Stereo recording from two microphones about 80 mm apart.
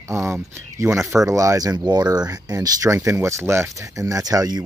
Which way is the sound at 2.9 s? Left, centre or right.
Right.